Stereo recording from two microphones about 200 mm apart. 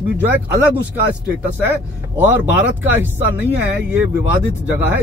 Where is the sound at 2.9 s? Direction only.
10° right (ahead or behind).